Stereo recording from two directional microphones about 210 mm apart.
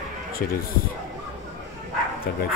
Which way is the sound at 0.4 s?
45° left (ahead or behind).